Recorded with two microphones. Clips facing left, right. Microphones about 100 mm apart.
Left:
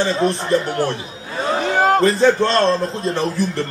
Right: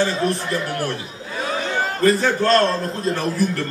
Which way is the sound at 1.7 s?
60° left (ahead or behind).